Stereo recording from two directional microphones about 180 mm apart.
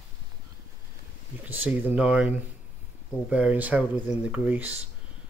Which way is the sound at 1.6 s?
10° right (ahead or behind).